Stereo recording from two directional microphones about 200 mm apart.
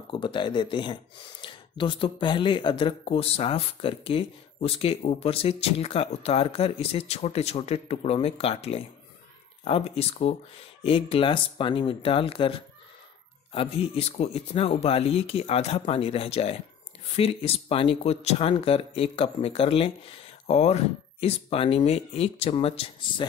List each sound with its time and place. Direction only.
0.1 s speech: 25° left (ahead or behind)